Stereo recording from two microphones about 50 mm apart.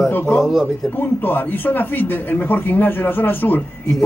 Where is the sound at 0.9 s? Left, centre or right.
Left.